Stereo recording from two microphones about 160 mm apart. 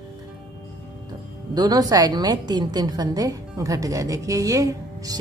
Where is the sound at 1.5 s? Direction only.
25° right (ahead or behind).